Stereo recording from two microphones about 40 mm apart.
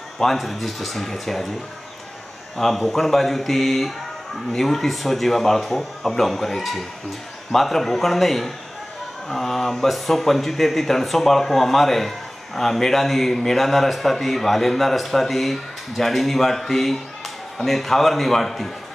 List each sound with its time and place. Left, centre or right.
0.2 s a man's voice: centre
2.5 s a man's voice: centre